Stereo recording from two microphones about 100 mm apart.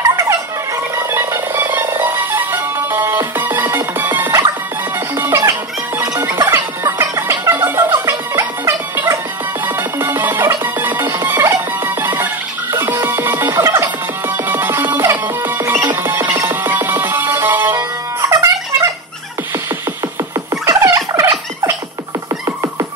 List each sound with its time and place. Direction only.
0.1 s music: 30° right (ahead or behind)
9.7 s music: 20° right (ahead or behind)
17.7 s music: 35° right (ahead or behind)
20.6 s a sound: 30° right (ahead or behind)